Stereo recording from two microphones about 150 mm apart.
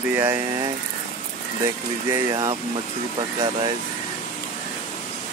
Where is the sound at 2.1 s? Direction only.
20° right (ahead or behind).